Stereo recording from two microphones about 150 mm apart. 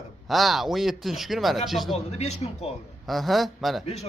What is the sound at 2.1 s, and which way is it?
Speech, 45° left (ahead or behind).